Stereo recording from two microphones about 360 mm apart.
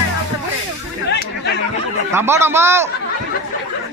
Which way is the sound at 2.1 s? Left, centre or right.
Centre.